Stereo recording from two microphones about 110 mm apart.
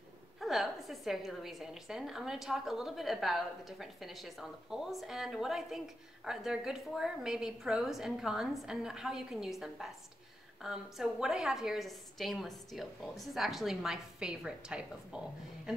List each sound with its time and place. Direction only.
0.4 s a woman's voice: centre (ahead or behind)